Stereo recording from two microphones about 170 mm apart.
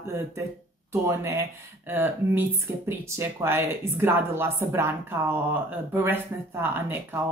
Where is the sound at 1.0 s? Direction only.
15° right (ahead or behind).